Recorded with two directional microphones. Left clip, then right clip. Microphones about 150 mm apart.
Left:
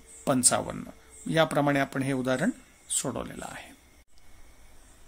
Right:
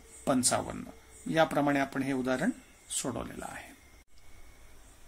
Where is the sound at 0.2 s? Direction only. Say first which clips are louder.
Left 3 dB; 30° left (ahead or behind).